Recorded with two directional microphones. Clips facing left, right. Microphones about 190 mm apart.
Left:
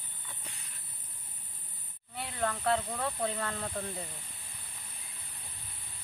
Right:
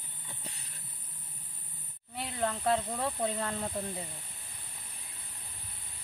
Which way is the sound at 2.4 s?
20° right (ahead or behind).